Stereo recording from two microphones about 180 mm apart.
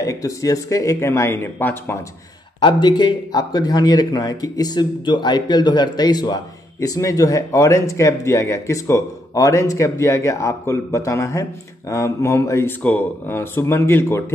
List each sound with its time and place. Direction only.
0.0 s speech: 20° left (ahead or behind)
2.6 s speech: 25° left (ahead or behind)